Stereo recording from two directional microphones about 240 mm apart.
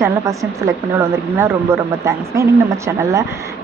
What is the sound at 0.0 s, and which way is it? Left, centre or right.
A woman's voice, centre.